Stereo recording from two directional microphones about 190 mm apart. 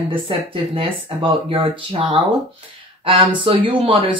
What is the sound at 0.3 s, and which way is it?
Speech, 30° right (ahead or behind).